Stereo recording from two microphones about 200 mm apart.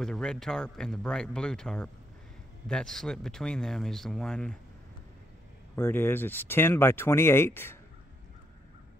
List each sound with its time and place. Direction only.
0.0 s speech: 5° left (ahead or behind)
5.8 s speech: 10° left (ahead or behind)